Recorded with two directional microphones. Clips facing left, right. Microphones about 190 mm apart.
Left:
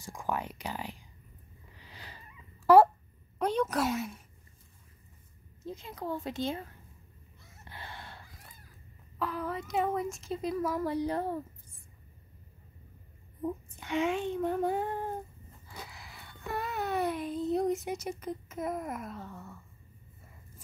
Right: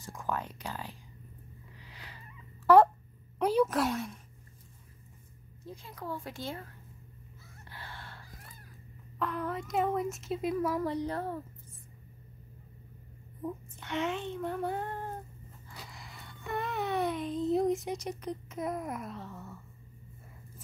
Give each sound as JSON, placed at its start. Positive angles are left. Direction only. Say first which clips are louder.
{"t": 0.0, "sound": "child singing", "louder": "left 1 dB", "side_deg": 10}
{"t": 1.9, "sound": "a sound", "louder": "left 2 dB", "side_deg": 30}
{"t": 2.6, "sound": "speech", "louder": "left 1 dB", "side_deg": 10}
{"t": 3.3, "sound": "speech", "louder": "right 2 dB", "side_deg": -5}
{"t": 5.7, "sound": "a child's voice", "louder": "left 4 dB", "side_deg": 20}
{"t": 7.6, "sound": "a sound", "louder": "left 2 dB", "side_deg": 20}
{"t": 9.2, "sound": "speech", "louder": "even", "side_deg": 0}
{"t": 13.4, "sound": "child singing", "louder": "left 3 dB", "side_deg": 10}
{"t": 15.9, "sound": "a sound", "louder": "right 1 dB", "side_deg": 0}